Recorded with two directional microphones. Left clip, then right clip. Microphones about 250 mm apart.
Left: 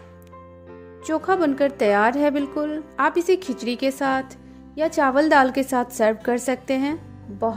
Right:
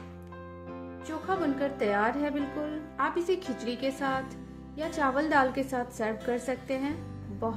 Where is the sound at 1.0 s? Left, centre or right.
Left.